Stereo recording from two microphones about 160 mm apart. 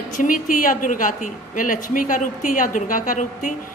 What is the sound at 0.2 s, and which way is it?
A woman's voice, 60° left (ahead or behind).